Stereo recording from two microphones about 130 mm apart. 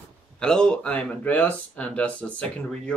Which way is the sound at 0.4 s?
5° left (ahead or behind).